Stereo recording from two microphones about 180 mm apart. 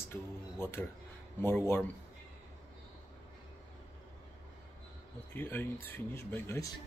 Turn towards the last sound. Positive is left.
turn(degrees=15)  # may be behind; listen again after turning